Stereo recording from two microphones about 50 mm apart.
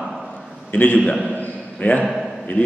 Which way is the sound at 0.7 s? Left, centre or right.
Left.